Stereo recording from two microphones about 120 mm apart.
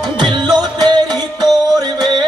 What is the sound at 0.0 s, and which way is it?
Music, 40° right (ahead or behind).